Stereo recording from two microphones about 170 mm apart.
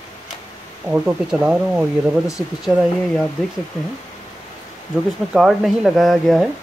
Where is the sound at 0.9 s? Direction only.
10° right (ahead or behind).